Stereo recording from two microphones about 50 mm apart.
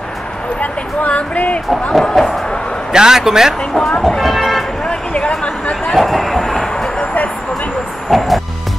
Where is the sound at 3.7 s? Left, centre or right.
Centre.